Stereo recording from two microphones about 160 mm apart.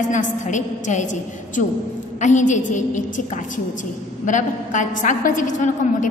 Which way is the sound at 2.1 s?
50° left (ahead or behind).